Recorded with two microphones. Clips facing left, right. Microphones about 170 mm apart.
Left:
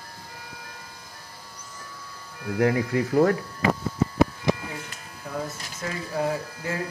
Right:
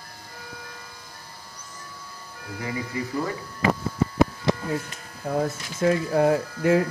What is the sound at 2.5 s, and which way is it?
Speech, 90° left.